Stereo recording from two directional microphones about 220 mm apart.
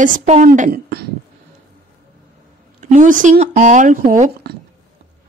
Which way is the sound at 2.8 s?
35° right (ahead or behind).